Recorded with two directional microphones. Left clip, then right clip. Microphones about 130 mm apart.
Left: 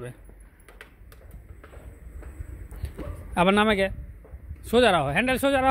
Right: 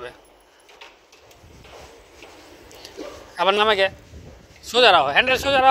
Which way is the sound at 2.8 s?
90° left.